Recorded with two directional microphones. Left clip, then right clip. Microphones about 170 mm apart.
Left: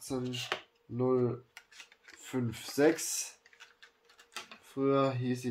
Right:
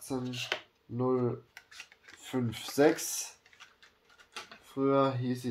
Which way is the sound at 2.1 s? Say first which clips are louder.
Right 2 dB; 20° right (ahead or behind).